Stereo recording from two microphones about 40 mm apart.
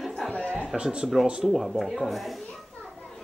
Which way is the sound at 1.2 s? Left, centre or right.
Right.